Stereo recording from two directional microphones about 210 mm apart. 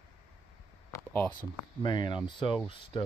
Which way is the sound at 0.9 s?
10° left (ahead or behind).